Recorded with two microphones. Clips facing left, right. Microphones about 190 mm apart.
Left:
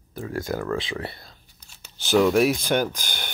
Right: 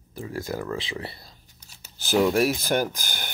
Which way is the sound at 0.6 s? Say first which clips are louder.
Left 3 dB; 20° right (ahead or behind).